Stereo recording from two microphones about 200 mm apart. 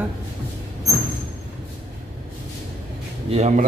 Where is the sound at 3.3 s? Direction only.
35° right (ahead or behind).